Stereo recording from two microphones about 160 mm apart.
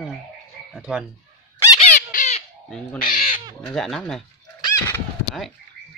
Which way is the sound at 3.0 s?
60° left (ahead or behind).